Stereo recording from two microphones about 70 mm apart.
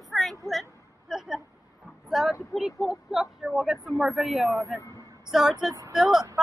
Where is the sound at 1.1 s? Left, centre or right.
Centre.